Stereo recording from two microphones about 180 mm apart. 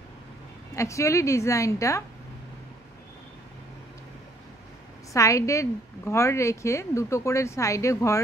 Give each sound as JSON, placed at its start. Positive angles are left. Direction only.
{"t": 0.7, "sound": "a woman's voice", "side_deg": 15}
{"t": 5.1, "sound": "a woman's voice", "side_deg": 15}